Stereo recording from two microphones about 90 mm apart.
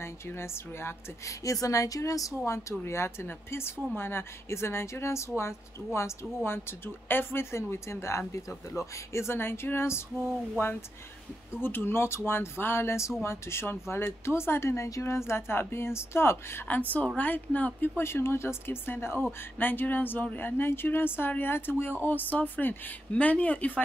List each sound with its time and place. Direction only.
0.0 s speech: 30° left (ahead or behind)
11.6 s speech: 25° left (ahead or behind)